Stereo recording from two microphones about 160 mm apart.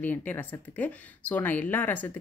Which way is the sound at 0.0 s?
10° left (ahead or behind).